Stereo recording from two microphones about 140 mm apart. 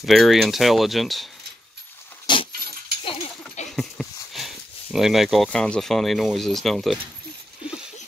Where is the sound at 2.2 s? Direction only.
35° left (ahead or behind).